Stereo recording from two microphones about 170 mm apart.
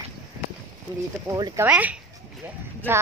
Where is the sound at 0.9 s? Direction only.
25° right (ahead or behind).